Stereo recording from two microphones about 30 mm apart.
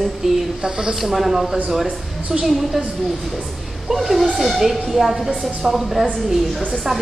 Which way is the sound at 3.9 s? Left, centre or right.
Centre.